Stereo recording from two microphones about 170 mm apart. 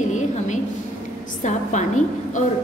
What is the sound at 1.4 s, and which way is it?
A woman's voice, 45° left (ahead or behind).